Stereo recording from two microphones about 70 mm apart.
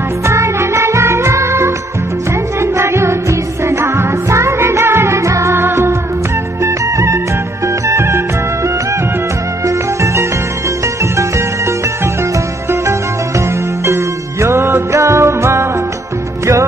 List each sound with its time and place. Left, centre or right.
0.3 s music: right
11.1 s music: right
13.8 s music: right